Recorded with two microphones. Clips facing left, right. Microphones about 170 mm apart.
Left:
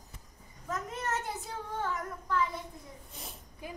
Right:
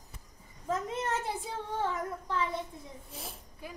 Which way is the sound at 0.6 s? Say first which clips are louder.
Right 3 dB; 30° right (ahead or behind).